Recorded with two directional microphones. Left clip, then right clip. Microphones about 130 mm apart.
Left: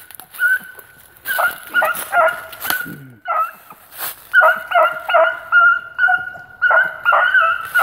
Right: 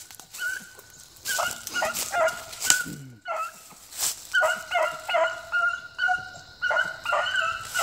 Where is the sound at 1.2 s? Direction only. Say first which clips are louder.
Left 10 dB; 5° right (ahead or behind).